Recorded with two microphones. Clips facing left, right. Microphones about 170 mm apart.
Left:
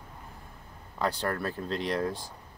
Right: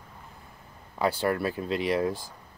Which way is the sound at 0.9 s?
10° right (ahead or behind).